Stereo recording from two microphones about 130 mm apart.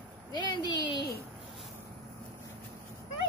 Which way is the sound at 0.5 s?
35° left (ahead or behind).